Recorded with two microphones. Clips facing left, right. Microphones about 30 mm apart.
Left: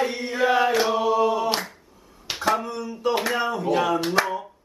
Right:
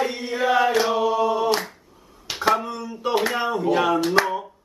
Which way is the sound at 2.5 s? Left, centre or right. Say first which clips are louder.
Right 2 dB; centre.